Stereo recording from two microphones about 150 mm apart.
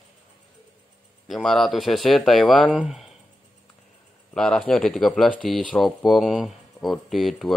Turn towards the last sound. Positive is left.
turn(degrees=0)  # may be behind; listen again after turning